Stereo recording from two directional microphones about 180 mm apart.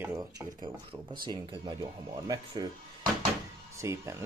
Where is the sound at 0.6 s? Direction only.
30° right (ahead or behind).